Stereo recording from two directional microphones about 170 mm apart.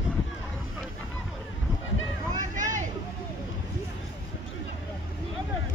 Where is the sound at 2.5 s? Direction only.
50° right (ahead or behind).